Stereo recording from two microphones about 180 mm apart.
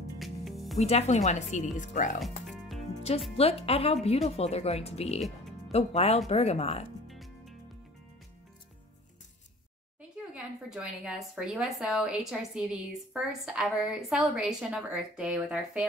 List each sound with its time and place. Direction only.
0.2 s music: centre (ahead or behind)
0.7 s speech: 35° left (ahead or behind)
3.3 s speech: 35° left (ahead or behind)
7.1 s music: centre (ahead or behind)
10.3 s a woman's voice: 5° right (ahead or behind)